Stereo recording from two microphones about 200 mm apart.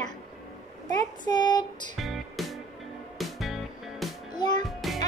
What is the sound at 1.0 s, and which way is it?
Child singing, 20° left (ahead or behind).